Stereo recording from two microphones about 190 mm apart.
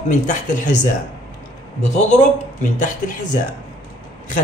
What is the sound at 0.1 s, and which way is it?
Speech, 40° left (ahead or behind).